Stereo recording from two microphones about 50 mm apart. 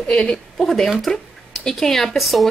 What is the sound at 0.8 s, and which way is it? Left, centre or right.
Speech, centre.